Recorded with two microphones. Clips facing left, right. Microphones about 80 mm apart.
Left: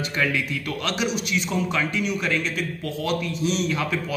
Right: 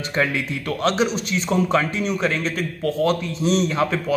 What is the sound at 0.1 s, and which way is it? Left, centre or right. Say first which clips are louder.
A man's voice: right 4 dB; right.